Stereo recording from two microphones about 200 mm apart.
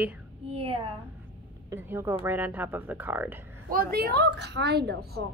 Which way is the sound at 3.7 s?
50° right (ahead or behind).